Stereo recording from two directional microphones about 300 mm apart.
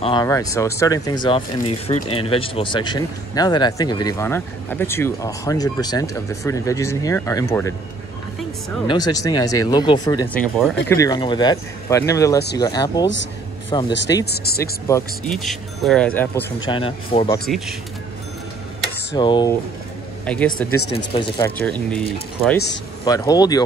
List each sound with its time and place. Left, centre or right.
0.0 s speech: centre
8.8 s speech: centre
19.1 s speech: centre
20.2 s speech: centre
20.9 s speech: centre
23.0 s speech: centre